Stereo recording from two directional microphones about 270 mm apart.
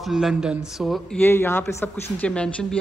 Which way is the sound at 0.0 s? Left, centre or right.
Centre.